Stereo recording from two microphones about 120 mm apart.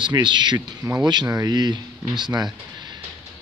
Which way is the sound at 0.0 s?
40° right (ahead or behind).